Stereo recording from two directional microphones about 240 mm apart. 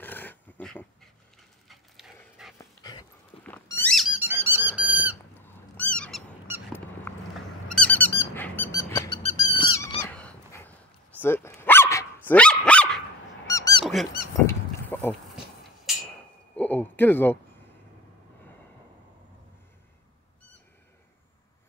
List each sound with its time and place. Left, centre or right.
0.0 s dog: centre
2.4 s dog: centre
2.8 s squeak: centre
5.4 s cat: centre
7.7 s squeak: centre
9.4 s a sound: left; by 13.0 s centre
13.5 s squeak: centre
14.4 s goose: centre
16.5 s a sound: centre